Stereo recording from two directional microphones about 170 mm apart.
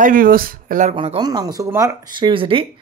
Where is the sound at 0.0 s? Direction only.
55° right (ahead or behind).